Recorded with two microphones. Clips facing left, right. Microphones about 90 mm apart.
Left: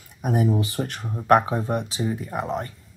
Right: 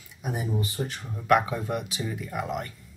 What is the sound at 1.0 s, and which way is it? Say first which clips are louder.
Speech: left 4 dB; 35° left (ahead or behind).